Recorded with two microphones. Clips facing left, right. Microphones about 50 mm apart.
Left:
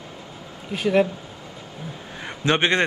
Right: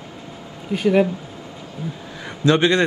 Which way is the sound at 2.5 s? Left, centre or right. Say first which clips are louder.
Right 4 dB; left.